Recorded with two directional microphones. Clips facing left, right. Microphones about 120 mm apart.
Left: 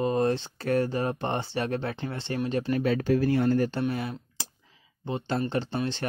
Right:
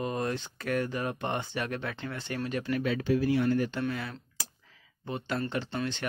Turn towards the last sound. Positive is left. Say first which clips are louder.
# left 4 dB
turn(degrees=30)  # may be behind; listen again after turning